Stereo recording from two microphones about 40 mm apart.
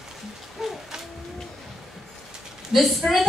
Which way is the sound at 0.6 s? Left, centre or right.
Centre.